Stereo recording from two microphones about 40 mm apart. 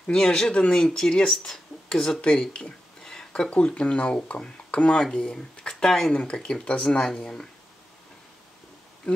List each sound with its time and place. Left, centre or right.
0.1 s speech: centre
2.5 s a sound: centre
3.4 s speech: left
5.0 s speech: centre